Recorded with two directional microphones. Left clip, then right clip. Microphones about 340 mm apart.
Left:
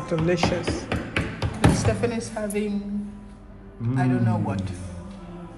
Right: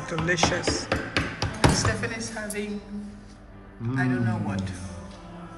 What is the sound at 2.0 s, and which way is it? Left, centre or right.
Speech, centre.